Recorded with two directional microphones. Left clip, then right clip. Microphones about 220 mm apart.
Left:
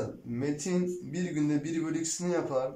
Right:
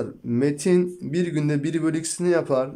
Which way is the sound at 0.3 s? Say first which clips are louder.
Right 13 dB; 50° right (ahead or behind).